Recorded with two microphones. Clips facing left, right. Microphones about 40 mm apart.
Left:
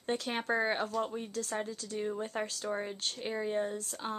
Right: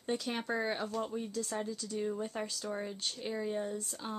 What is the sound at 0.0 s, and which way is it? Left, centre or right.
Speech, left.